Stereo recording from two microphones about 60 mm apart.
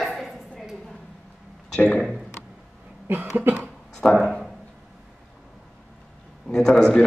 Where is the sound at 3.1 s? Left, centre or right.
Right.